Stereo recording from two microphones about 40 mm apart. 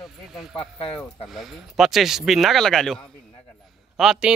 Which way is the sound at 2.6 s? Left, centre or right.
Centre.